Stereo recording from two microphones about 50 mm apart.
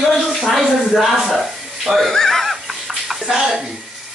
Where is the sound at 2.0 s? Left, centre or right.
Centre.